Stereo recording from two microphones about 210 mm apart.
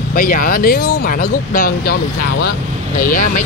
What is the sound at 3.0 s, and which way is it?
Speech, 40° left (ahead or behind).